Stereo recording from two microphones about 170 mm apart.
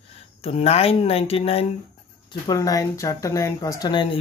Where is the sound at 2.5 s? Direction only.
20° left (ahead or behind).